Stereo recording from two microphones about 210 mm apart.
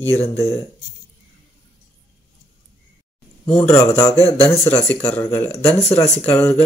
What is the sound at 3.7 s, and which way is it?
Speech, 15° left (ahead or behind).